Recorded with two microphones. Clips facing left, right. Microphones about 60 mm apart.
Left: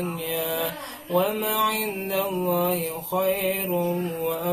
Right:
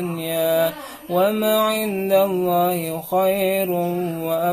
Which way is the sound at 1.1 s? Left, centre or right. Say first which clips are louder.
Right 5 dB; right.